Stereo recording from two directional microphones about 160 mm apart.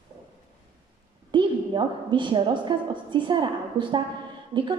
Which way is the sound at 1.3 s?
30° right (ahead or behind).